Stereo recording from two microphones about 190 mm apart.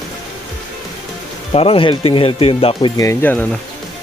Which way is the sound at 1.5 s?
30° left (ahead or behind).